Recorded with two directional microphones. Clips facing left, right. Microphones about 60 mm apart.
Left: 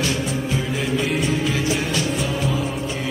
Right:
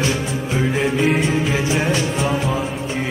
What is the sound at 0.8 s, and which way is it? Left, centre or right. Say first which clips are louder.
Music: right 5 dB; right.